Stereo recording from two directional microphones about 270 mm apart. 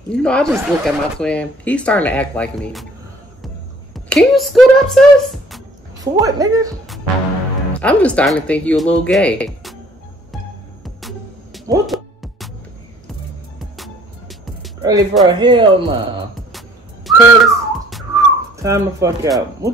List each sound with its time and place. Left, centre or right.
0.1 s speech: centre
3.9 s speech: centre
5.9 s speech: centre
7.8 s speech: centre
10.8 s music: centre
14.8 s music: centre
15.2 s speech: centre
16.5 s whistling: centre
18.1 s whistling: centre